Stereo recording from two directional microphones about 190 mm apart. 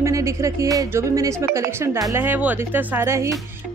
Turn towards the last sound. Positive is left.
turn(degrees=-15)  # may be behind; listen again after turning